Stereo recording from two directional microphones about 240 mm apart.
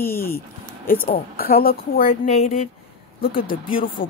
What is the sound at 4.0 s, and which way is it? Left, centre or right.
Speech, left.